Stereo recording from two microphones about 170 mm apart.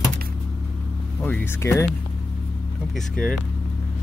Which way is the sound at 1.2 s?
10° left (ahead or behind).